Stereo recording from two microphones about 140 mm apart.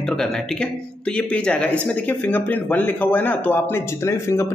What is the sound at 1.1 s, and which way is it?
Speech, 10° left (ahead or behind).